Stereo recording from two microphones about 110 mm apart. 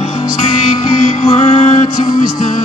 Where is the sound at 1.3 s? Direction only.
85° left.